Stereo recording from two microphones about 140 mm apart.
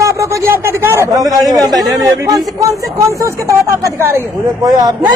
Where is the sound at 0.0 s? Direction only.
20° right (ahead or behind).